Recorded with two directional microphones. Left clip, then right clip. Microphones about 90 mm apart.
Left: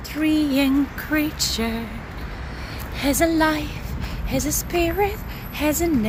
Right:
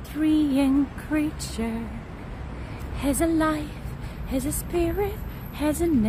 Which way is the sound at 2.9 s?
10° right (ahead or behind).